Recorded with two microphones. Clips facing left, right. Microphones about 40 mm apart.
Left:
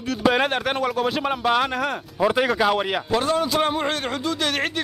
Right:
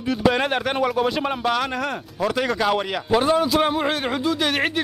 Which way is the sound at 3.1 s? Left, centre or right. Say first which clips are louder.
Right 4 dB; centre.